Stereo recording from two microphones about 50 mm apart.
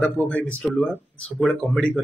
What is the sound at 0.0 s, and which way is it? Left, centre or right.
Speech, left.